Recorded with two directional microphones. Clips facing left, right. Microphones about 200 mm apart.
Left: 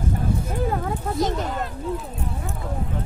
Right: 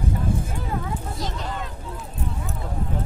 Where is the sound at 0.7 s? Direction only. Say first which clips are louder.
Left 4 dB; 50° left (ahead or behind).